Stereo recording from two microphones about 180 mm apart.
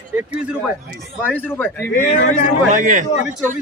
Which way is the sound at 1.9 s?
50° left (ahead or behind).